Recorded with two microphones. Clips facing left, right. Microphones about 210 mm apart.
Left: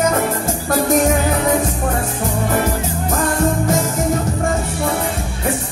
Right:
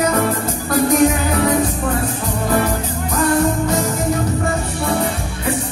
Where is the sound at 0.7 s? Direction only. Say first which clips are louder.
Right 1 dB; 45° left (ahead or behind).